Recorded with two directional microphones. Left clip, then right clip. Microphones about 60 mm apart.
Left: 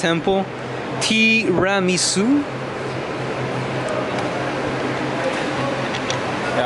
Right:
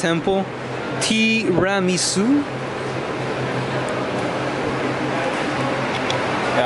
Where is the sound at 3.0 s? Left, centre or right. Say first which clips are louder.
Right 1 dB; centre.